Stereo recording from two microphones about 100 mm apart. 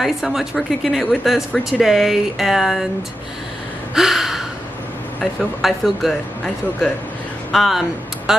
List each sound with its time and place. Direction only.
0.0 s speech: 5° right (ahead or behind)
3.9 s speech: 5° right (ahead or behind)